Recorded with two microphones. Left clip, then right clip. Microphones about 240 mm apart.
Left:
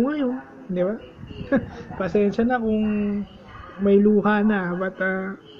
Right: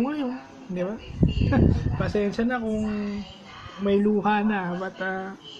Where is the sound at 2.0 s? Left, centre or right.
Centre.